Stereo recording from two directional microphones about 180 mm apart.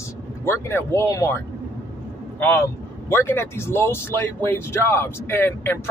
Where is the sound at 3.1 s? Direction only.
10° left (ahead or behind).